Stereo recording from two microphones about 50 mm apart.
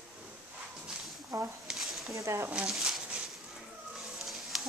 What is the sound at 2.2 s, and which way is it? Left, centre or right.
Speech, right.